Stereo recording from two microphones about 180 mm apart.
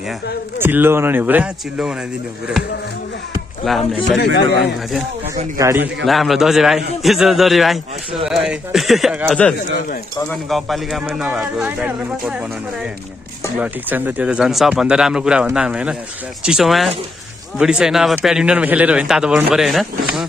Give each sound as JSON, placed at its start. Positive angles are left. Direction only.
{"t": 0.6, "sound": "speech", "side_deg": -10}
{"t": 3.6, "sound": "speech", "side_deg": 0}
{"t": 5.6, "sound": "a man's voice", "side_deg": -20}
{"t": 6.0, "sound": "speech", "side_deg": 0}
{"t": 13.6, "sound": "speech", "side_deg": -10}